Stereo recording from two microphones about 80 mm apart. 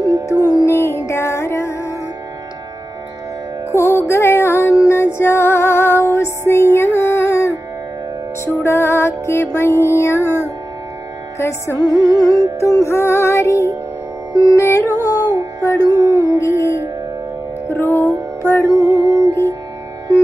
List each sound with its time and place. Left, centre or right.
0.0 s music: left
0.7 s music: left
3.7 s music: left
11.3 s music: left
11.8 s music: left
14.3 s carnatic music: left
15.8 s music: left
17.7 s music: left
18.8 s music: left